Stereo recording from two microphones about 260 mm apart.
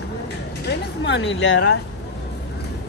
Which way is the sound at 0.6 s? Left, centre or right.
Left.